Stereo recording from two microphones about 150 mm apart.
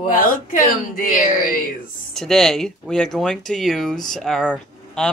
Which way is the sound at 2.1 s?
5° left (ahead or behind).